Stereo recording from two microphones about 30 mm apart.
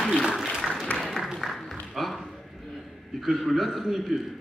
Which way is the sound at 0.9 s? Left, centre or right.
Centre.